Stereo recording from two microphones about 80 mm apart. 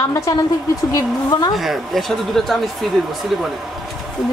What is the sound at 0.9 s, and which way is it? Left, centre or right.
Speech, left.